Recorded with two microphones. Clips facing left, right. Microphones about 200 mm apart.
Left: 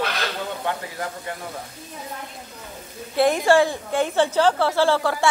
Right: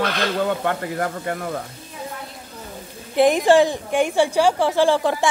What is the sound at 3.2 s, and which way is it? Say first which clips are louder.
A woman's voice: right 3 dB; 15° right (ahead or behind).